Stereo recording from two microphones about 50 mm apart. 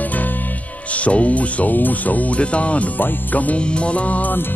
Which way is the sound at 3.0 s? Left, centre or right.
Left.